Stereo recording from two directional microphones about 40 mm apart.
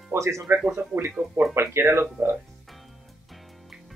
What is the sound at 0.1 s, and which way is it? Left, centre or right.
Speech, right.